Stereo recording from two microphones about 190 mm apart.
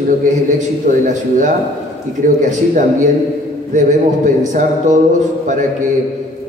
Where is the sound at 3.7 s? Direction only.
40° right (ahead or behind).